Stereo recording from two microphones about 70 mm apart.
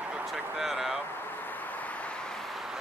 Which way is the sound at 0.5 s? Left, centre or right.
Centre.